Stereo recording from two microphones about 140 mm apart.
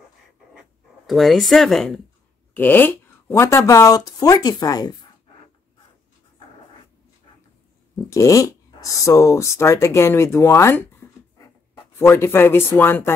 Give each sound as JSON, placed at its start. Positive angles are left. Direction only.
{"t": 0.6, "sound": "speech", "side_deg": 0}
{"t": 2.5, "sound": "speech", "side_deg": 15}
{"t": 7.9, "sound": "speech", "side_deg": 20}
{"t": 12.0, "sound": "speech", "side_deg": 15}